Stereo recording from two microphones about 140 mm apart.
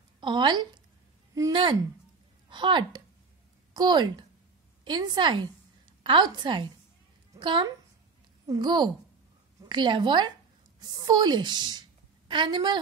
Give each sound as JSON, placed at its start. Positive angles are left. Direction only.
{"t": 0.2, "sound": "a woman's voice", "side_deg": -35}